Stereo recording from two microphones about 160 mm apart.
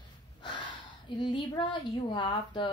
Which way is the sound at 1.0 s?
30° left (ahead or behind).